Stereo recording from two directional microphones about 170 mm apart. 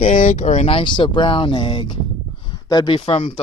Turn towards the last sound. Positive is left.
turn(degrees=35)  # may be behind; listen again after turning